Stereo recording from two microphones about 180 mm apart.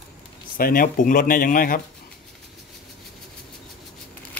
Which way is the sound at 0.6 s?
50° left (ahead or behind).